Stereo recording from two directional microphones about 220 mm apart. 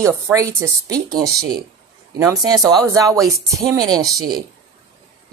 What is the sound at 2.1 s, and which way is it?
Speech, 15° right (ahead or behind).